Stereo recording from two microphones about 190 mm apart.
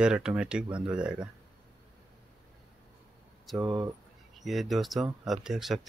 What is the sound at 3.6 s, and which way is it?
Speech, 20° right (ahead or behind).